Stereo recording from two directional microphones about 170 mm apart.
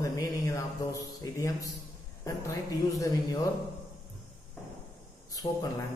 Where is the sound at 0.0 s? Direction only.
20° left (ahead or behind).